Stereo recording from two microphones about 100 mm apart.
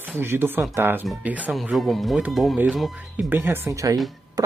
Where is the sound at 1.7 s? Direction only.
Centre (ahead or behind).